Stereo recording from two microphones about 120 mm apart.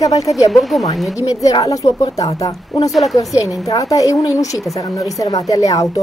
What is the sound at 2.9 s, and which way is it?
Speech, centre (ahead or behind).